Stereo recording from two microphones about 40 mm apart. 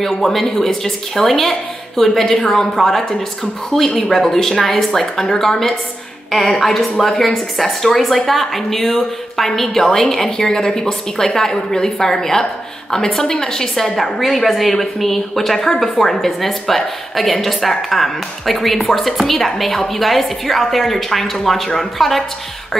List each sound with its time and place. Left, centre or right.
0.0 s a woman's voice: centre
13.9 s a woman's voice: centre